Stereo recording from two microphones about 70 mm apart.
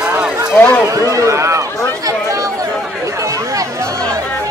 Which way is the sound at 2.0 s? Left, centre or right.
Right.